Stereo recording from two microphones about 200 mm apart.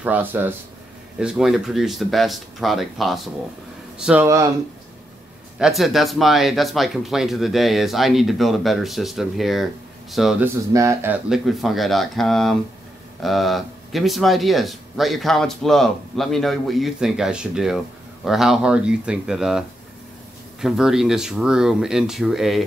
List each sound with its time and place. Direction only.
0.0 s speech: 10° right (ahead or behind)
5.6 s speech: centre (ahead or behind)
10.7 s speech: 15° right (ahead or behind)
11.2 s speech: centre (ahead or behind)
20.6 s speech: centre (ahead or behind)